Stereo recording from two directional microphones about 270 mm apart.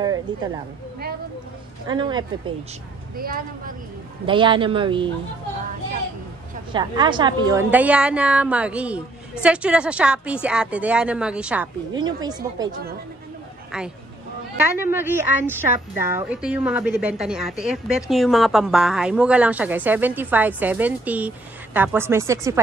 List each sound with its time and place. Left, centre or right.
0.0 s speech: centre
1.9 s speech: centre
3.2 s speech: right
4.3 s speech: centre
6.7 s a woman's voice: centre
14.8 s a woman's voice: centre